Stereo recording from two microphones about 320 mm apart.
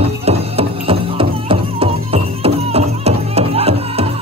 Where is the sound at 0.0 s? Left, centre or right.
Centre.